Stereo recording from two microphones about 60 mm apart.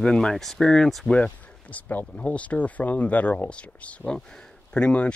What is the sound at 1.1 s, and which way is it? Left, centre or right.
Speech, left.